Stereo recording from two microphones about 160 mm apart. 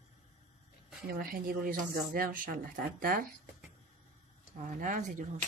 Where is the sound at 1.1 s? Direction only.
65° right (ahead or behind).